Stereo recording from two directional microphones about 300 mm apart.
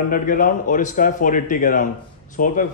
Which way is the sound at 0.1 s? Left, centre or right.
Left.